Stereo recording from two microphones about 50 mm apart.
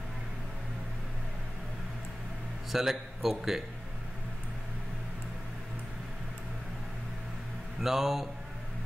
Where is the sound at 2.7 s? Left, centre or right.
Centre.